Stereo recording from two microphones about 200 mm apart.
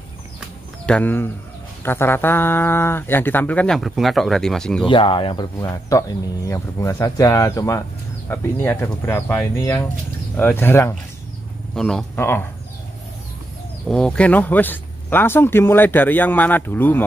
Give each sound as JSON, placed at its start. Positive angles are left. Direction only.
{"t": 0.8, "sound": "speech", "side_deg": 5}
{"t": 4.8, "sound": "speech", "side_deg": 25}
{"t": 13.8, "sound": "speech", "side_deg": 5}